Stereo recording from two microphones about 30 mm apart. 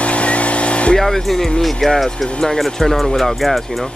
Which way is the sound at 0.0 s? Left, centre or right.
Left.